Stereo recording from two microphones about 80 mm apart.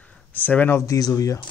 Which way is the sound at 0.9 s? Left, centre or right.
Left.